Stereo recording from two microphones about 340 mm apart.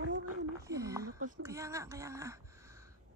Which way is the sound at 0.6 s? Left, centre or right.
Centre.